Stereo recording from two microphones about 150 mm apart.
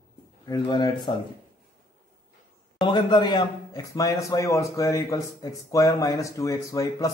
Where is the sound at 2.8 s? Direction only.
30° left (ahead or behind).